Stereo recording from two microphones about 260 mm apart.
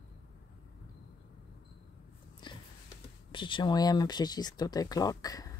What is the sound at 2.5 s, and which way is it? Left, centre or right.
Sniff, centre.